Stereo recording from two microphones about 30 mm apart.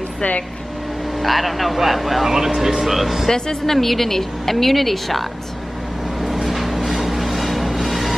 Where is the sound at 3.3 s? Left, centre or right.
Left.